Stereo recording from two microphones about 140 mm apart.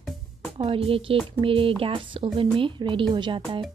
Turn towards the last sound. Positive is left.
turn(degrees=-35)  # may be behind; listen again after turning